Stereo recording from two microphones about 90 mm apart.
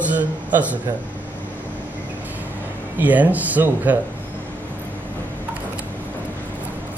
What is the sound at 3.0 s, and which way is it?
Speech, 20° right (ahead or behind).